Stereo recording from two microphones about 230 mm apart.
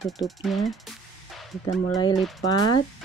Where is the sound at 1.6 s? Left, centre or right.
Centre.